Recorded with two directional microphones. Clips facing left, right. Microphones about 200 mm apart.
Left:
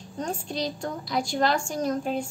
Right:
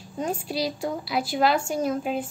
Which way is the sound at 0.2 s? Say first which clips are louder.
Right 3 dB; 5° right (ahead or behind).